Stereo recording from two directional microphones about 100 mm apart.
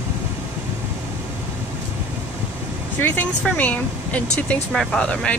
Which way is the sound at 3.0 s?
15° left (ahead or behind).